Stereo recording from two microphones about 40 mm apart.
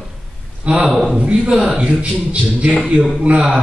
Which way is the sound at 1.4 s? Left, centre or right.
Right.